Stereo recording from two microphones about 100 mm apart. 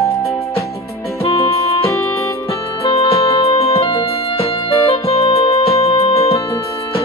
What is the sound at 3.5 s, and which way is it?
Music, 85° left.